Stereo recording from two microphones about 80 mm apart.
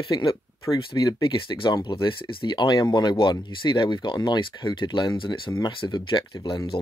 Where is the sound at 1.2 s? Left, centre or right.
Left.